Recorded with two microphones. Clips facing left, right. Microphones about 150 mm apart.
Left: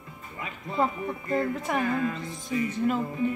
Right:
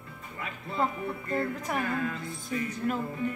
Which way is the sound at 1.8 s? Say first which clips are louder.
Left 4 dB; 25° left (ahead or behind).